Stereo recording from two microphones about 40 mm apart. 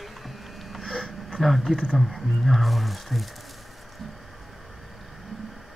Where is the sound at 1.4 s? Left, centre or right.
Centre.